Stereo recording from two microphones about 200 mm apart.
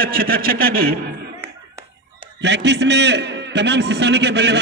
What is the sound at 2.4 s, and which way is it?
A man's voice, 60° right (ahead or behind).